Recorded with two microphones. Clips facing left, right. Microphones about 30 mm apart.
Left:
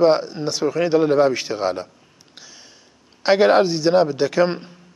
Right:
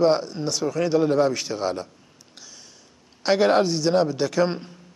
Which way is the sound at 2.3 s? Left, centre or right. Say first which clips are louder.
Left 2 dB; centre.